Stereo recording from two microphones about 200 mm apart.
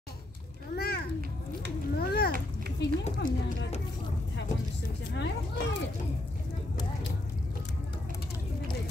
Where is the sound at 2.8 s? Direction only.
60° left (ahead or behind).